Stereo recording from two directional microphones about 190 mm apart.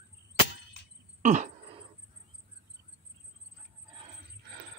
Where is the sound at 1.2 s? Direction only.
40° right (ahead or behind).